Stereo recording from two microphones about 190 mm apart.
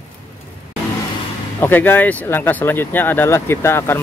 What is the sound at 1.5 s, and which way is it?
Speech, 10° left (ahead or behind).